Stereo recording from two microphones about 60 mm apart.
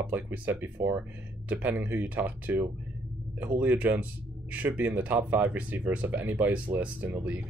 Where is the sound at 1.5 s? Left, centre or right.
Right.